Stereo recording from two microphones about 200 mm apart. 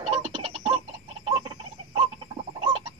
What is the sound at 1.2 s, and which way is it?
Chicken, 25° right (ahead or behind).